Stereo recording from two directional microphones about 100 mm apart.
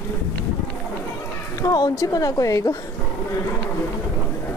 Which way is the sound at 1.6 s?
40° left (ahead or behind).